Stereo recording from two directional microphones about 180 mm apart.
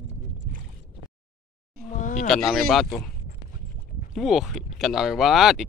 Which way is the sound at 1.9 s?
45° left (ahead or behind).